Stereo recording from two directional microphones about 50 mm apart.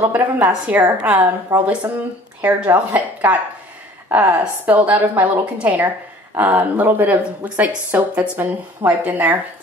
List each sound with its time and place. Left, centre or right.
0.0 s speech: right
5.4 s a woman's voice: right